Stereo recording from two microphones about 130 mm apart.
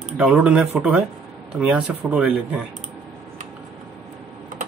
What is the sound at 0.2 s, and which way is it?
Speech, 10° right (ahead or behind).